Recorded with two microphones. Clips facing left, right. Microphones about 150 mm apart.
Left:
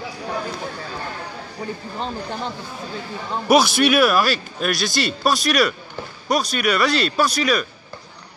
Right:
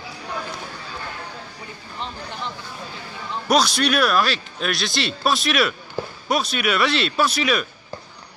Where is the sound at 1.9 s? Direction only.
40° left (ahead or behind).